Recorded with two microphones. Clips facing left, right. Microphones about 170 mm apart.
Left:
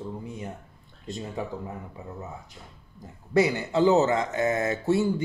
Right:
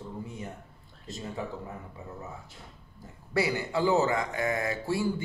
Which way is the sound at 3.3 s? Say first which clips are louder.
Left 6 dB; 20° left (ahead or behind).